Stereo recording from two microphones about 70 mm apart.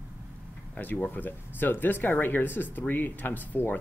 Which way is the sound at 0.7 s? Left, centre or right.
Left.